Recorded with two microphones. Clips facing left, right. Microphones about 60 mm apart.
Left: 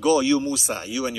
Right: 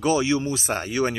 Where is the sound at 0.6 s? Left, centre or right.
Right.